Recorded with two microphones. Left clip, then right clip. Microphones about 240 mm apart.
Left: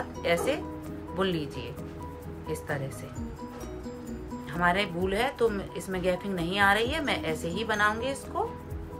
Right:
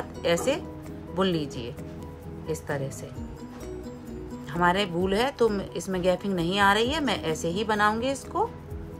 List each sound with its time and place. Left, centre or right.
0.2 s speech: centre
4.6 s speech: centre